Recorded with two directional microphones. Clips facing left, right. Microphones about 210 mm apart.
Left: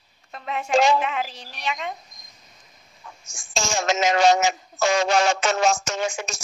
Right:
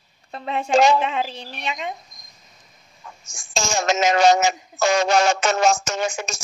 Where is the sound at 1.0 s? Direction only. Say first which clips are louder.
Right 3 dB; 25° right (ahead or behind).